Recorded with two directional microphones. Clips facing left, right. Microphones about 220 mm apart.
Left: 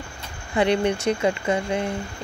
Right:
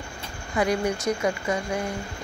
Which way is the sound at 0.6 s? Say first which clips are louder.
Left 3 dB; 30° left (ahead or behind).